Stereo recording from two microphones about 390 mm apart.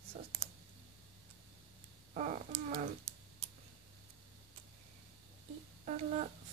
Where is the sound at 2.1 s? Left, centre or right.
Centre.